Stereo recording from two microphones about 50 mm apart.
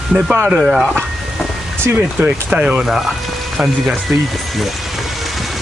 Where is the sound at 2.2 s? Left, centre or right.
Centre.